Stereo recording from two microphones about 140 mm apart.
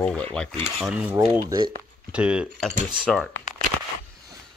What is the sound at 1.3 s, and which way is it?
Speech, 20° right (ahead or behind).